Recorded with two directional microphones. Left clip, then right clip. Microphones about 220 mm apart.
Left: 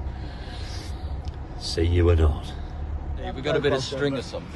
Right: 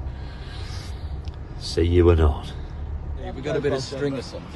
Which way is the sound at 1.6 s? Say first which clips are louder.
Right 5 dB; 20° right (ahead or behind).